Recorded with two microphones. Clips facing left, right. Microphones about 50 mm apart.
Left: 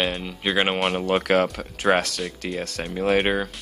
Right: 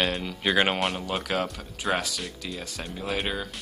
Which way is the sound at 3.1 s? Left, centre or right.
Left.